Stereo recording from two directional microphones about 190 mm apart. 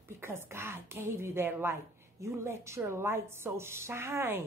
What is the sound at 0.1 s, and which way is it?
Speech, 15° right (ahead or behind).